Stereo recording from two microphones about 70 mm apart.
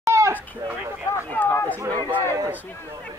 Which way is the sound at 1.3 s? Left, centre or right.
Left.